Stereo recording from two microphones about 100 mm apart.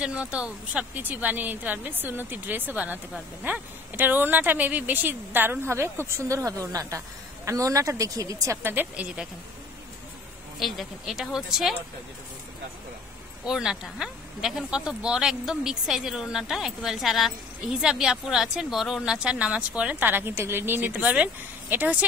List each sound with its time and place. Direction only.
0.0 s speech: 10° right (ahead or behind); by 8.5 s 35° right (ahead or behind)
8.6 s speech: 15° right (ahead or behind)
10.6 s speech: centre (ahead or behind)
13.5 s speech: 5° right (ahead or behind)